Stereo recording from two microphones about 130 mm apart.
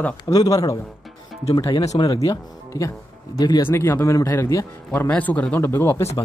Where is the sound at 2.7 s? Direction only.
25° left (ahead or behind).